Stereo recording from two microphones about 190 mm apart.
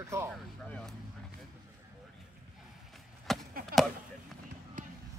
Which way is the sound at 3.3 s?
Centre (ahead or behind).